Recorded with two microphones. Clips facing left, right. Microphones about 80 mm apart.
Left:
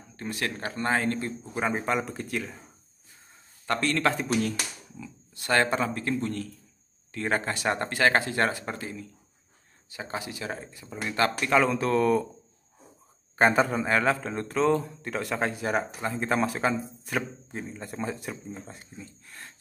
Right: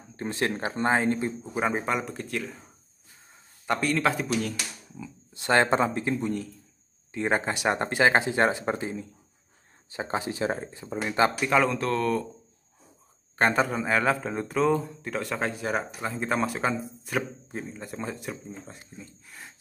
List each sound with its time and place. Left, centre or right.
0.1 s speech: right
1.6 s speech: centre
3.6 s speech: centre
5.3 s speech: right
11.4 s speech: centre
13.4 s speech: centre